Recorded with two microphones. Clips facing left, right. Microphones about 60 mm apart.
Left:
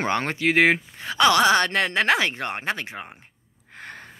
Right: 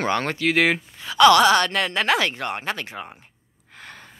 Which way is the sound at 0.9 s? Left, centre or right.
Left.